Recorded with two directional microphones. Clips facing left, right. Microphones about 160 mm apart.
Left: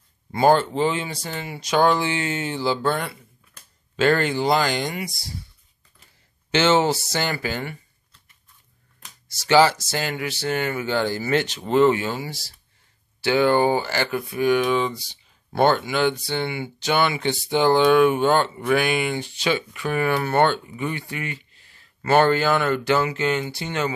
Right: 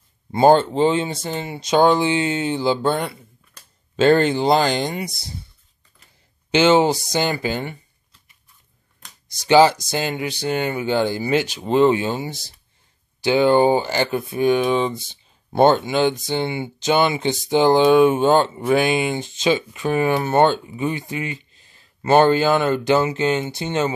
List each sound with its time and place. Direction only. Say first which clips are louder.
0.3 s speech: right 4 dB; 25° right (ahead or behind)
6.5 s speech: right 4 dB; 15° right (ahead or behind)
9.4 s speech: right 3 dB; 15° right (ahead or behind)